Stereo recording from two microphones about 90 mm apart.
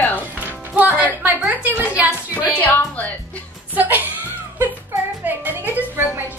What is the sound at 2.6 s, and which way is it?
Speech, 20° left (ahead or behind).